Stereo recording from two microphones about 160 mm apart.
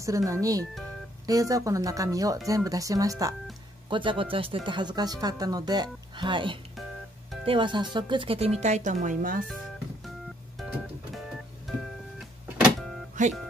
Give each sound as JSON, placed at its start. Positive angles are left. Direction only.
{"t": 0.0, "sound": "speech", "side_deg": -20}
{"t": 3.9, "sound": "speech", "side_deg": -30}
{"t": 6.7, "sound": "music", "side_deg": 0}
{"t": 7.4, "sound": "speech", "side_deg": -30}
{"t": 13.2, "sound": "music", "side_deg": -55}